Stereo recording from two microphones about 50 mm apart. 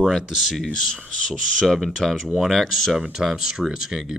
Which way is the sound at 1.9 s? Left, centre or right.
Centre.